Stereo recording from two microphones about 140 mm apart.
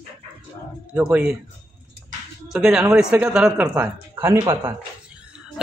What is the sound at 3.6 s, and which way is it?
A man's voice, 15° right (ahead or behind).